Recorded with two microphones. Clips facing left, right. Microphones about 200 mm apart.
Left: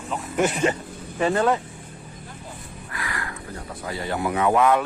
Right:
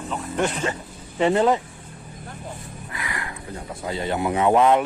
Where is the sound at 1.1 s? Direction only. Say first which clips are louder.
Right 2 dB; 20° right (ahead or behind).